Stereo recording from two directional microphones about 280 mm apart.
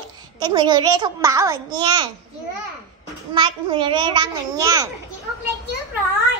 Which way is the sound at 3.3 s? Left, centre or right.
Centre.